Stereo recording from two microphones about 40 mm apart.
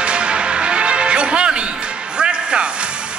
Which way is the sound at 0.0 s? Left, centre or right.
Right.